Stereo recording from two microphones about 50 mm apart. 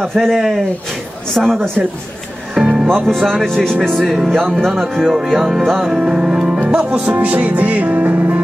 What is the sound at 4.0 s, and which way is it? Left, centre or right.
Speech, centre.